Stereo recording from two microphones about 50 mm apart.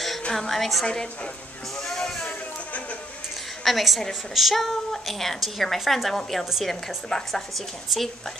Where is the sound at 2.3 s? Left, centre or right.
Left.